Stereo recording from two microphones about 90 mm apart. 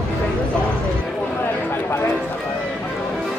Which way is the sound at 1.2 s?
20° left (ahead or behind).